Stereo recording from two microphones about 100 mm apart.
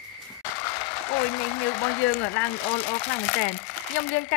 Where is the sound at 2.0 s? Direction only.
15° left (ahead or behind).